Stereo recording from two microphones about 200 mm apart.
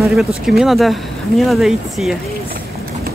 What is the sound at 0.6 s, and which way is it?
Speech, centre (ahead or behind).